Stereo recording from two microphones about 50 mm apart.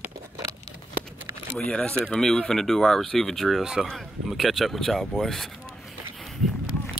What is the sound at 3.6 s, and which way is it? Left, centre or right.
Speech, centre.